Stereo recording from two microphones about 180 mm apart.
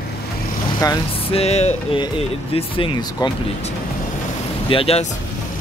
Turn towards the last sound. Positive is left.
turn(degrees=30)  # may be behind; listen again after turning